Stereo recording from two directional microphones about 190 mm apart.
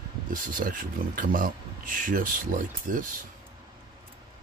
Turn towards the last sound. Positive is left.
turn(degrees=-45)  # may be behind; listen again after turning